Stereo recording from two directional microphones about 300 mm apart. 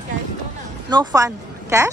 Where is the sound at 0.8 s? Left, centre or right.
Centre.